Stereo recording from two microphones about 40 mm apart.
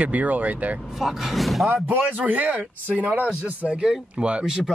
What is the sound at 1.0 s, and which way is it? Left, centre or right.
Speech, centre.